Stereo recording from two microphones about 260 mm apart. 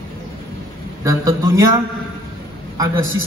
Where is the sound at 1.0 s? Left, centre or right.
Centre.